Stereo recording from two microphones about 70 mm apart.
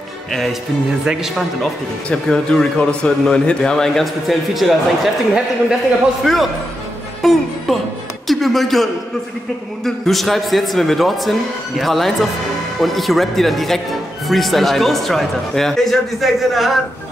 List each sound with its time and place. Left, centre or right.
0.3 s speech: centre
1.6 s speech: centre
7.2 s music: centre
8.3 s speech: centre
9.8 s speech: centre